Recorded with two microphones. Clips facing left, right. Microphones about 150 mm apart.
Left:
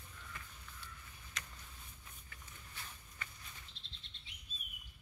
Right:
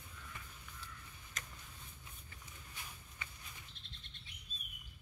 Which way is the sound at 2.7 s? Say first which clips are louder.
Left 1 dB; 15° right (ahead or behind).